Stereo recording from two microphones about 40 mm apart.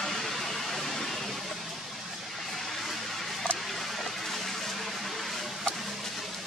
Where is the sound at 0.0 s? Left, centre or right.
Centre.